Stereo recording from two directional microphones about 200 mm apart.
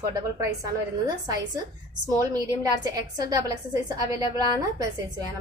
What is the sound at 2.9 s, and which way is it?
A woman's voice, 15° right (ahead or behind).